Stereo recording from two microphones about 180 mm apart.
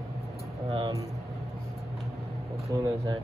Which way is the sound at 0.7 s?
25° right (ahead or behind).